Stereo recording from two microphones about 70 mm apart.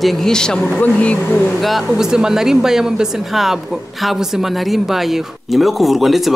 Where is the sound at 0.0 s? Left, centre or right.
Centre.